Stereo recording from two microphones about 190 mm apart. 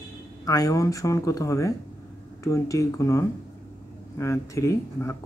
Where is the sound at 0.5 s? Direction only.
20° left (ahead or behind).